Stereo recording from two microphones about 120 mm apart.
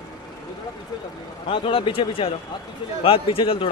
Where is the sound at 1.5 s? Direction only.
50° left (ahead or behind).